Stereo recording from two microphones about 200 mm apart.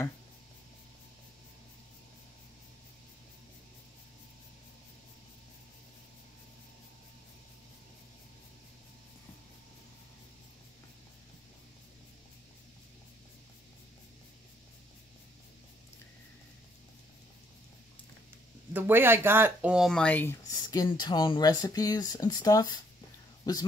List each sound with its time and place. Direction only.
18.7 s speech: 10° right (ahead or behind); by 22.8 s 20° left (ahead or behind)